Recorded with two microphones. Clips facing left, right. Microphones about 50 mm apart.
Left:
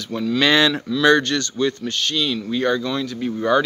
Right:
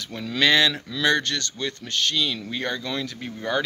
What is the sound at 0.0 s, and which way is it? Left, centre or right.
Speech, centre.